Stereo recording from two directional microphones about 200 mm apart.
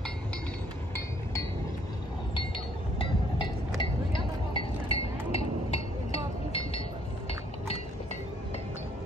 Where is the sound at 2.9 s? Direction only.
25° left (ahead or behind).